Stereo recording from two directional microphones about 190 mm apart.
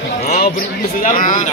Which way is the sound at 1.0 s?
45° left (ahead or behind).